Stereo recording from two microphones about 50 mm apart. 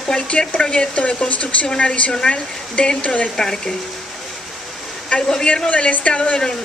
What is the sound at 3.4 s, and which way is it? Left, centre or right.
Speech, centre.